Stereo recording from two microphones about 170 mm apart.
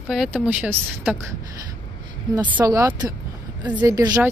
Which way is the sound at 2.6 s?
20° right (ahead or behind).